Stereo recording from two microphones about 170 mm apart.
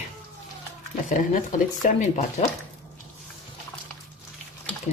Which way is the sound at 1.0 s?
50° left (ahead or behind).